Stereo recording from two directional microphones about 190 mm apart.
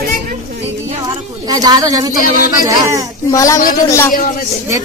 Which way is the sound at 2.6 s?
15° right (ahead or behind).